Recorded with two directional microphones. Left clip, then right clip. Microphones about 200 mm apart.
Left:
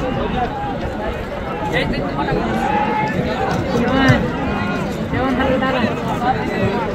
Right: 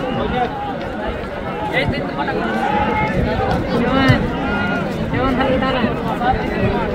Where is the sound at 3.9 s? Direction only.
20° left (ahead or behind).